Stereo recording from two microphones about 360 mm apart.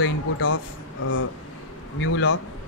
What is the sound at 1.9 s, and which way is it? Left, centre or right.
Speech, left.